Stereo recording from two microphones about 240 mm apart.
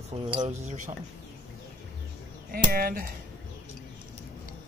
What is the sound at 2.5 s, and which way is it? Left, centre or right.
Speech, right.